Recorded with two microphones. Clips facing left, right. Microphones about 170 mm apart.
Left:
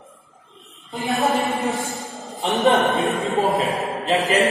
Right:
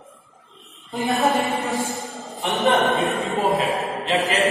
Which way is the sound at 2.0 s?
Centre (ahead or behind).